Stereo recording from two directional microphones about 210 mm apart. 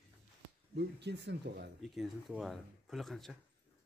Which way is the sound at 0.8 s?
55° right (ahead or behind).